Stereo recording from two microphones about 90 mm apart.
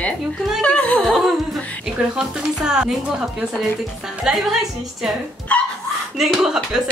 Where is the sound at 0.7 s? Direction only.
10° left (ahead or behind).